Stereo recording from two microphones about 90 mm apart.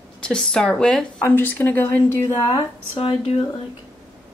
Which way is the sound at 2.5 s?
90° left.